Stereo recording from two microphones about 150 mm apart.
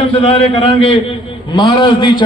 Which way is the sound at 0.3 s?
40° left (ahead or behind).